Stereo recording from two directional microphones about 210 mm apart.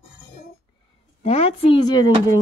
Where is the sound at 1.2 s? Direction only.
30° left (ahead or behind).